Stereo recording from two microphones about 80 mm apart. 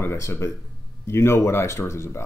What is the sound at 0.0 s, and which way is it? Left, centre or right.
Speech, left.